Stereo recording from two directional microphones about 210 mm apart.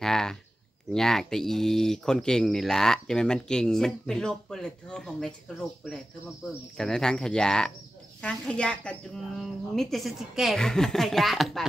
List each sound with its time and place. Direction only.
0.0 s a sound: centre (ahead or behind)
0.9 s speech: centre (ahead or behind)
6.8 s speech: 5° left (ahead or behind)